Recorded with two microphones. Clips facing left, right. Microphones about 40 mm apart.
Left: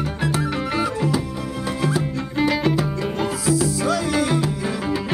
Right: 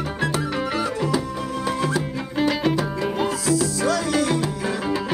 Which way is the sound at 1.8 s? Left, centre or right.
Centre.